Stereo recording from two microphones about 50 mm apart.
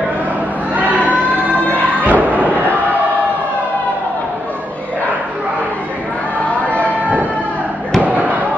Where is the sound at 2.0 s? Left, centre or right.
Right.